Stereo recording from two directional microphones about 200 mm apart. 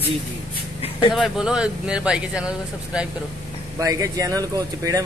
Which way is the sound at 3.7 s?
15° right (ahead or behind).